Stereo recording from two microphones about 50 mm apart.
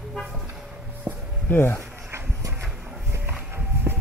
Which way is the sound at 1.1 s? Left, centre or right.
Right.